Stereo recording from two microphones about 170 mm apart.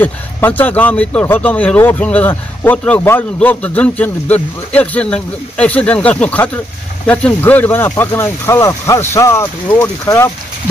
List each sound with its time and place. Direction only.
0.0 s speech: 10° left (ahead or behind)